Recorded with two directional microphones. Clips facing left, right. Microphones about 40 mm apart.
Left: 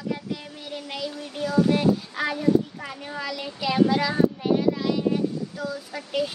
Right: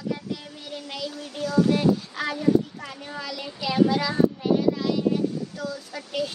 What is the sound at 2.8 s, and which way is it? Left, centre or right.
Speech, centre.